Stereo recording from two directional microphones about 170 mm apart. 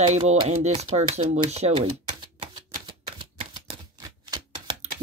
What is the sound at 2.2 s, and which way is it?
Typewriter, 25° right (ahead or behind).